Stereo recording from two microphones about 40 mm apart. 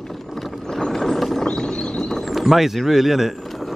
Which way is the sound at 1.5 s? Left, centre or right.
Centre.